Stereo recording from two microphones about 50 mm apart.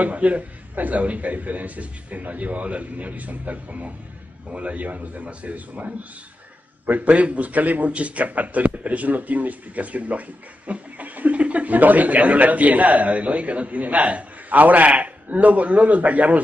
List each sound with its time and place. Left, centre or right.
0.0 s a man's voice: right